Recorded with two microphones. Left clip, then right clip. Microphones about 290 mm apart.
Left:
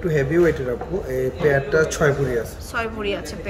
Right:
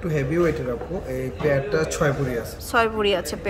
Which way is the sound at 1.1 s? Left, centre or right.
Centre.